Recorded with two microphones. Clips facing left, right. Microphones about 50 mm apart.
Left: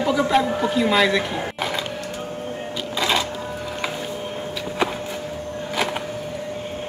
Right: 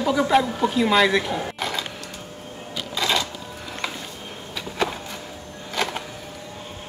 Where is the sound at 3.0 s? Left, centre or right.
Centre.